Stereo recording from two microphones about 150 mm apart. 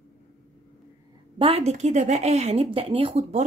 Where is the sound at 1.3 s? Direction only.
40° right (ahead or behind).